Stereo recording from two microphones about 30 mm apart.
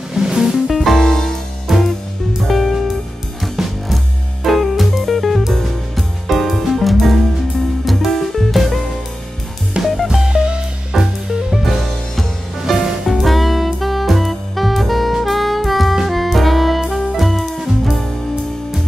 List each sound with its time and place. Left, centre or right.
0.1 s music: centre
0.7 s music: centre
1.0 s music: centre
2.4 s music: centre
3.9 s music: centre
9.8 s music: right
10.9 s music: centre
15.2 s saxophone: centre
16.1 s music: centre